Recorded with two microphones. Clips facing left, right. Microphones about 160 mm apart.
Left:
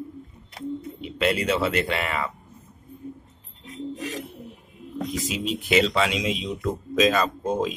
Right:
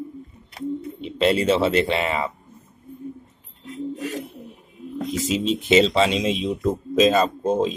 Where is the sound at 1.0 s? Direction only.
30° right (ahead or behind).